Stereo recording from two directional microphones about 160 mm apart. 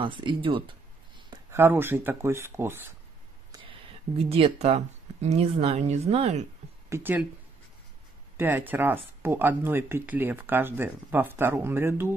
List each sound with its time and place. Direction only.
0.0 s speech: 30° right (ahead or behind)
1.5 s speech: 15° right (ahead or behind)
4.3 s speech: 40° right (ahead or behind)
6.9 s speech: 10° right (ahead or behind)
8.4 s speech: 10° right (ahead or behind)